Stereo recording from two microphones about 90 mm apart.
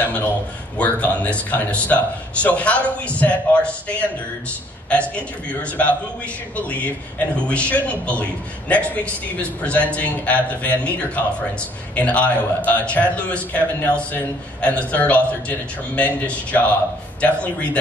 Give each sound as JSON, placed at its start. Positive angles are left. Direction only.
{"t": 0.0, "sound": "a man's voice", "side_deg": 20}